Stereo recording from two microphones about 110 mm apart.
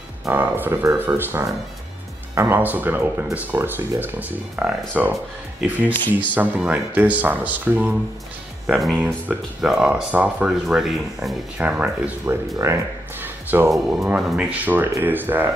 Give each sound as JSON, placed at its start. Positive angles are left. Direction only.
{"t": 0.3, "sound": "speech", "side_deg": -15}
{"t": 8.6, "sound": "speech", "side_deg": 0}
{"t": 8.9, "sound": "speech", "side_deg": -15}
{"t": 12.5, "sound": "music", "side_deg": -25}
{"t": 13.7, "sound": "speech", "side_deg": 0}